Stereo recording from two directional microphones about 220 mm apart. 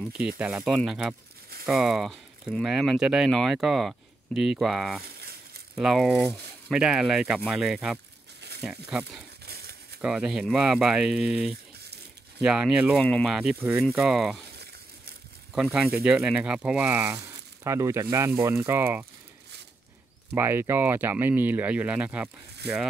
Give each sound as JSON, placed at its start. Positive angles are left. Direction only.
{"t": 0.4, "sound": "speech", "side_deg": 0}
{"t": 9.4, "sound": "a sound", "side_deg": -45}
{"t": 10.0, "sound": "speech", "side_deg": -5}
{"t": 15.5, "sound": "speech", "side_deg": -5}
{"t": 20.3, "sound": "speech", "side_deg": -10}
{"t": 22.6, "sound": "speech", "side_deg": -50}